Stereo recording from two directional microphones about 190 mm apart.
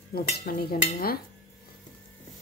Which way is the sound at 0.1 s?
55° left (ahead or behind).